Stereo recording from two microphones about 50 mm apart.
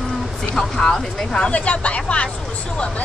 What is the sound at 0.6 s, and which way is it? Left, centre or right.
Speech, centre.